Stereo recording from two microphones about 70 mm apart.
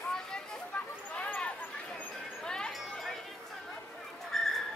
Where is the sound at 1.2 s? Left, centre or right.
Centre.